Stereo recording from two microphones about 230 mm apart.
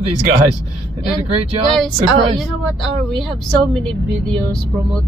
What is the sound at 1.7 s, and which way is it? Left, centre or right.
A woman's voice, centre.